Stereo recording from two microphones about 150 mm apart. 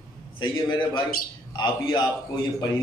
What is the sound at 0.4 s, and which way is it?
Speech, 30° left (ahead or behind).